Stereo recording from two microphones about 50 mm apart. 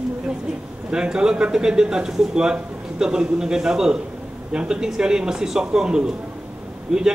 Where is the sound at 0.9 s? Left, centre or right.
Centre.